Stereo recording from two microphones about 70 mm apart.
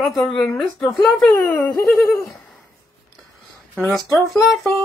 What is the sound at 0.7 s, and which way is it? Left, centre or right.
Speech, left.